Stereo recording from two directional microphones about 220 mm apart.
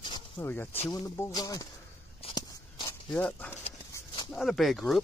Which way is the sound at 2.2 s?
20° left (ahead or behind).